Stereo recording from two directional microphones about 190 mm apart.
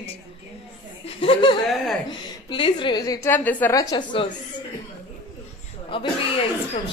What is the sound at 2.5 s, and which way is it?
A woman's voice, 25° left (ahead or behind).